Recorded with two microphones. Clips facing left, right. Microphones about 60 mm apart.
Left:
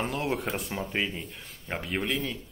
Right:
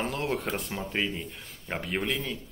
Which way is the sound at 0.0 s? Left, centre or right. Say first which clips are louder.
Even; centre.